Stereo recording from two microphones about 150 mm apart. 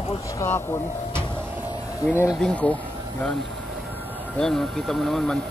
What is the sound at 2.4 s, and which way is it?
Speech, 5° left (ahead or behind).